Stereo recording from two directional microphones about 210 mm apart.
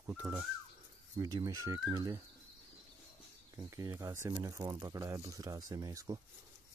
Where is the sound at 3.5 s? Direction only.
15° right (ahead or behind).